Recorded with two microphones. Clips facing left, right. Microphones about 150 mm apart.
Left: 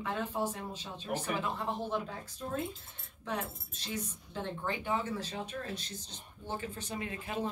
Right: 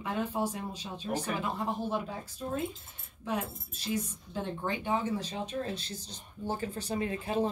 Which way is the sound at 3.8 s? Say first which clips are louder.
Right 6 dB; 15° right (ahead or behind).